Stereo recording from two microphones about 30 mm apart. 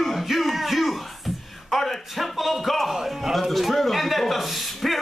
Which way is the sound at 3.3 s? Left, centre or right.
Centre.